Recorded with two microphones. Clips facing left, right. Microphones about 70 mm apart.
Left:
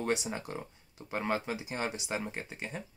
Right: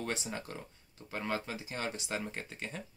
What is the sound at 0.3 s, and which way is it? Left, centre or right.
Speech, left.